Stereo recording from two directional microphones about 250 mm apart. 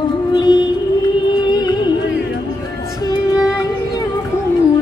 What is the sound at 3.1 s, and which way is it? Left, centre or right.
Music, centre.